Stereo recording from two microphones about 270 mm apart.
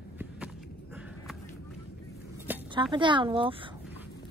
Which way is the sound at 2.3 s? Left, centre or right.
Centre.